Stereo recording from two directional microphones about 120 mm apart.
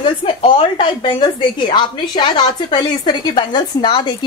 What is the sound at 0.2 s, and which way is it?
A woman's voice, 45° left (ahead or behind).